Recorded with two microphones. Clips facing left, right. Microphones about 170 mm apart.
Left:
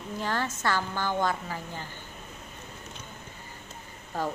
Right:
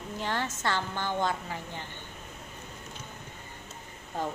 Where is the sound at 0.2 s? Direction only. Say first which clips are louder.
Left 2 dB; 20° right (ahead or behind).